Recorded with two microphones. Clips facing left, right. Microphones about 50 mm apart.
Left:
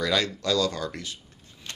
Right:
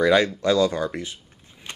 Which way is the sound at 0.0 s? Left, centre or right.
Right.